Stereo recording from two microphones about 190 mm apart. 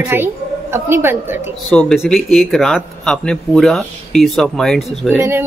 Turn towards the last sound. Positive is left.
turn(degrees=-10)  # may be behind; listen again after turning